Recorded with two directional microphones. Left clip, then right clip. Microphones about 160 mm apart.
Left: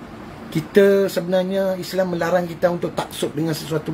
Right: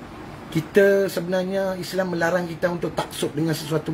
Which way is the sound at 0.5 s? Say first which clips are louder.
Left 2 dB; 10° left (ahead or behind).